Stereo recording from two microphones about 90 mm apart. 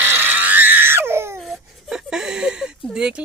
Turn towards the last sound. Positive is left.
turn(degrees=-10)  # may be behind; listen again after turning